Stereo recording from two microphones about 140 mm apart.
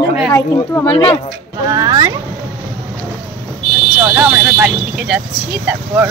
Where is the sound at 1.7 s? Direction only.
25° right (ahead or behind).